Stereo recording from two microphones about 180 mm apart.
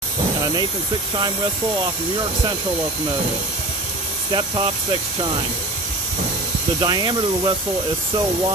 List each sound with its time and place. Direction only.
4.3 s speech: 25° right (ahead or behind)
6.8 s speech: 25° right (ahead or behind)